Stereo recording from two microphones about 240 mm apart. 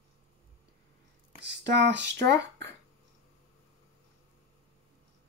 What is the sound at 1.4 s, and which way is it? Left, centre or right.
Speech, right.